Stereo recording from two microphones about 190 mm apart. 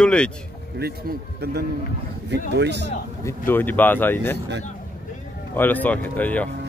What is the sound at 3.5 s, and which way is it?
Speech, 10° left (ahead or behind).